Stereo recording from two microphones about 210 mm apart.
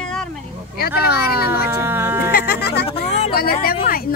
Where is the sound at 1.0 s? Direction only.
45° left (ahead or behind).